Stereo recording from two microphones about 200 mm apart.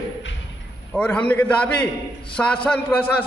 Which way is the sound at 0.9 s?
5° left (ahead or behind).